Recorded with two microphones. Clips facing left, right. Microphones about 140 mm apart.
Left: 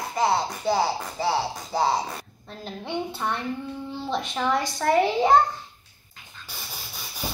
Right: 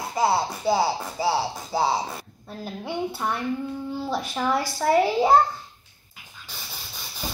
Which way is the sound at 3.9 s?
5° right (ahead or behind).